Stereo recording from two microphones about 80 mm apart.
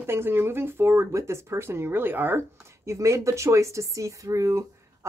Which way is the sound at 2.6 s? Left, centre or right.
Right.